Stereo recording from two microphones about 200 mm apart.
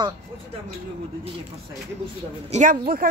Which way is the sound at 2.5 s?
35° right (ahead or behind).